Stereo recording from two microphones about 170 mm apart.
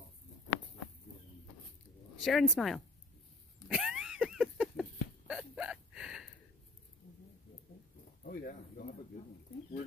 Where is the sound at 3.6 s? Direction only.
5° right (ahead or behind).